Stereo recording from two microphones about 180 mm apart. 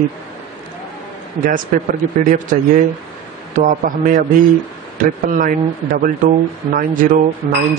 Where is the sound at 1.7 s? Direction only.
45° right (ahead or behind).